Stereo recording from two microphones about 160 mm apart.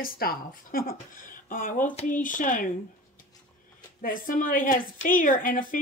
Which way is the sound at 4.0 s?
60° left (ahead or behind).